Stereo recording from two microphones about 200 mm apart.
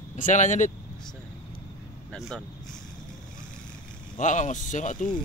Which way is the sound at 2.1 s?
Centre (ahead or behind).